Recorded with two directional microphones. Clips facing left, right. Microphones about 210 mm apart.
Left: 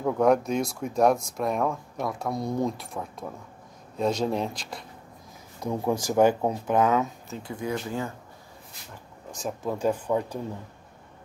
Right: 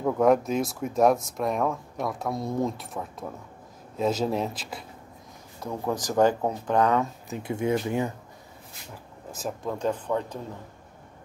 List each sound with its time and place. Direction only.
0.0 s speech: centre (ahead or behind)
5.6 s speech: 15° left (ahead or behind)
7.2 s speech: 20° right (ahead or behind)
9.3 s speech: centre (ahead or behind)
9.8 s speech: 10° left (ahead or behind)